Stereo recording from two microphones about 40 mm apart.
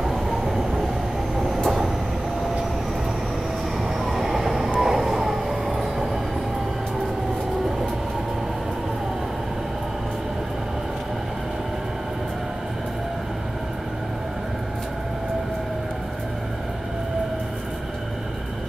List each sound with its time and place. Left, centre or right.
0.0 s train: centre
4.0 s train: centre